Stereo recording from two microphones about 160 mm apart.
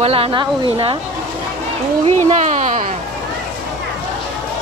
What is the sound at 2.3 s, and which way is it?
Speech, 45° right (ahead or behind).